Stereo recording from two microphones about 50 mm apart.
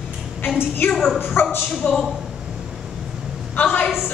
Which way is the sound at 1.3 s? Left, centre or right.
Left.